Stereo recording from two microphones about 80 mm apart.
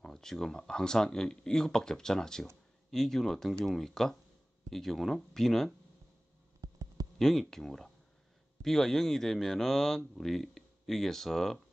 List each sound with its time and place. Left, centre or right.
0.0 s speech: centre
6.6 s a sound: right
7.2 s speech: centre